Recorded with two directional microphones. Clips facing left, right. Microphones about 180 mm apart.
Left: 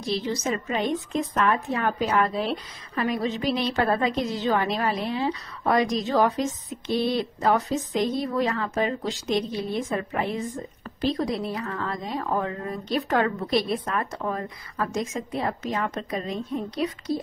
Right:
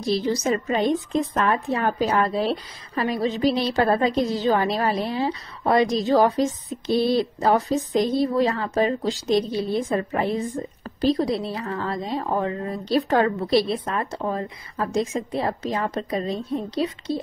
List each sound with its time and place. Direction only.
0.0 s a woman's voice: 35° right (ahead or behind)